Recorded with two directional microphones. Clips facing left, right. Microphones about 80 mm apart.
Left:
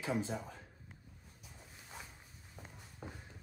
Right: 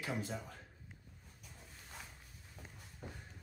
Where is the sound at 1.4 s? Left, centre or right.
Centre.